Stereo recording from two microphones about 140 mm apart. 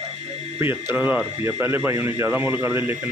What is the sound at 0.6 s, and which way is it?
Speech, 15° right (ahead or behind).